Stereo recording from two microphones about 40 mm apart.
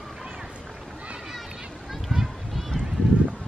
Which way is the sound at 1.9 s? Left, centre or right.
Centre.